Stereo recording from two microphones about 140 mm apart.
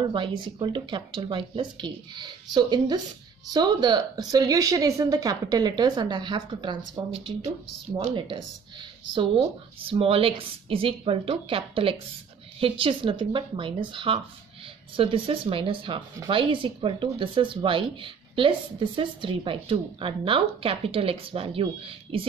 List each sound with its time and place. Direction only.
0.0 s a woman's voice: 35° right (ahead or behind)
8.0 s speech: 40° right (ahead or behind)